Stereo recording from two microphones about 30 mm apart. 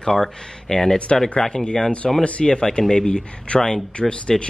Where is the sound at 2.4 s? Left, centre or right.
Left.